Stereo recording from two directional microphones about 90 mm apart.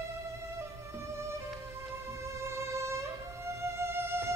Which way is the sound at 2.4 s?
30° right (ahead or behind).